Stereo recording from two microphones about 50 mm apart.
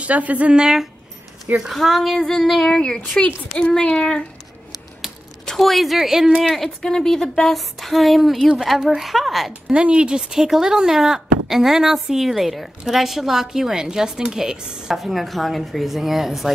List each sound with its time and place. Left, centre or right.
0.0 s a woman's voice: right
0.6 s a woman's voice: centre
1.8 s speech: centre
5.6 s a woman's voice: centre
6.4 s speech: centre
6.8 s speech: centre
9.7 s a woman's voice: right
10.3 s a woman's voice: centre
15.0 s speech: centre